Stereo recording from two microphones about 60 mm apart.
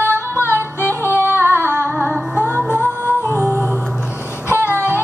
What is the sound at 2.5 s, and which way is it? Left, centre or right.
Music, right.